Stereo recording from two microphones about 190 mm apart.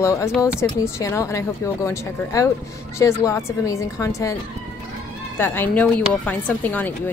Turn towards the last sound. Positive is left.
turn(degrees=10)  # may be behind; listen again after turning